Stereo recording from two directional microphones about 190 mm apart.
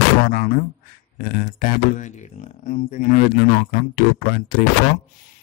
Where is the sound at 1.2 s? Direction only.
45° left (ahead or behind).